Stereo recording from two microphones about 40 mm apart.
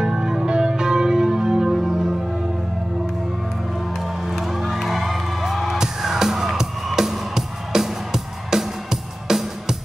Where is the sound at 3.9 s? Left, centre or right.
Centre.